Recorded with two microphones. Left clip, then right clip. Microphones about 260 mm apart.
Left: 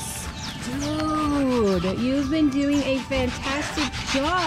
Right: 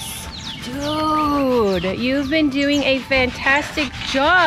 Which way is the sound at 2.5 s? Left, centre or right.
Centre.